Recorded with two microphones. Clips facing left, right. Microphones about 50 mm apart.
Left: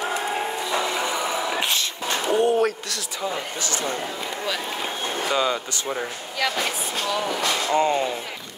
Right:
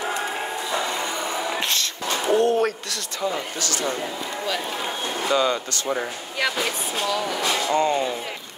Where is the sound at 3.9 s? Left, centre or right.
Centre.